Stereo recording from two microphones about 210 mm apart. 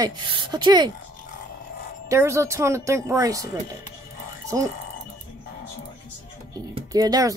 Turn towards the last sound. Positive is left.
turn(degrees=-15)  # may be behind; listen again after turning